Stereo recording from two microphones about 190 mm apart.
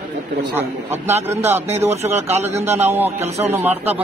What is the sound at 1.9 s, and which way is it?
Speech, 35° right (ahead or behind).